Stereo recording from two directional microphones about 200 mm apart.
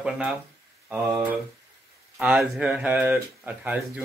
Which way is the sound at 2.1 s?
Centre (ahead or behind).